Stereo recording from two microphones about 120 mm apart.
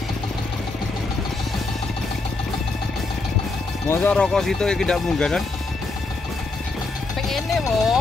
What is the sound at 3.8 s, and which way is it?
Music, 20° left (ahead or behind).